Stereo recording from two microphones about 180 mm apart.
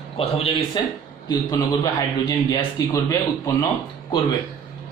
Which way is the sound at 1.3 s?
20° left (ahead or behind).